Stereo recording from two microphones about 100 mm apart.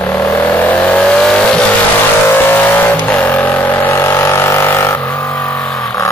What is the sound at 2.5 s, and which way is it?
Vehicle, 20° left (ahead or behind).